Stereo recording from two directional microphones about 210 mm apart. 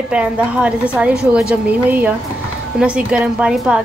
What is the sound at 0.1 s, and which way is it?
A woman's voice, 5° right (ahead or behind).